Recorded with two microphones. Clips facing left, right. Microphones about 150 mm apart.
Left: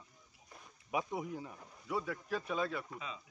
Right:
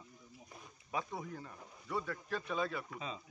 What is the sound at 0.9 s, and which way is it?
Speech, 15° left (ahead or behind).